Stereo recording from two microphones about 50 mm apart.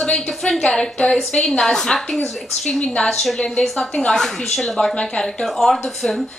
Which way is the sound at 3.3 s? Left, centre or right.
Centre.